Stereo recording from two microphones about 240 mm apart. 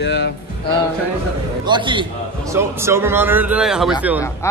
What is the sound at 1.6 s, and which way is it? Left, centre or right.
A man's voice, centre.